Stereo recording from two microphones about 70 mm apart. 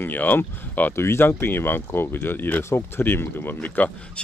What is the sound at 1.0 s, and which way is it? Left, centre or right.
Speech, left.